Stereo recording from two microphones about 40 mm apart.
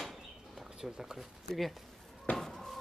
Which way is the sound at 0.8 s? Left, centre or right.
Centre.